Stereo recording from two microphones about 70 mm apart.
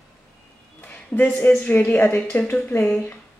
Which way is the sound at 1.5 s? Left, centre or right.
Left.